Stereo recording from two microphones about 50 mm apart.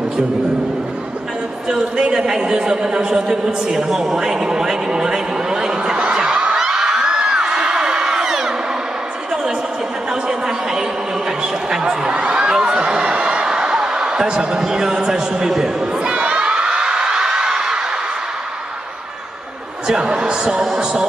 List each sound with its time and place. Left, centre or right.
1.7 s a man's voice: centre
6.0 s snicker: centre
6.5 s a sound: centre
10.2 s a sound: centre
16.0 s crowd: right
19.9 s a man's voice: centre